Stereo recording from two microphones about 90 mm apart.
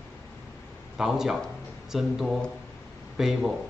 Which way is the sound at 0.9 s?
5° right (ahead or behind).